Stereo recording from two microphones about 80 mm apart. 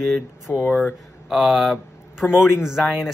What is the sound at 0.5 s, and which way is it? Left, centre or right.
Speech, left.